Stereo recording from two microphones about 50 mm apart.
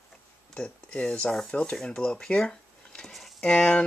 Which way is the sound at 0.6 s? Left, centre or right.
Left.